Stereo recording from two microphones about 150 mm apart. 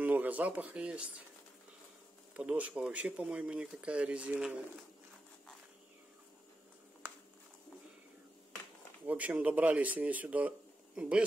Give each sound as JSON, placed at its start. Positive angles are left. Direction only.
{"t": 0.0, "sound": "speech", "side_deg": -10}
{"t": 2.3, "sound": "speech", "side_deg": -10}
{"t": 9.0, "sound": "speech", "side_deg": -10}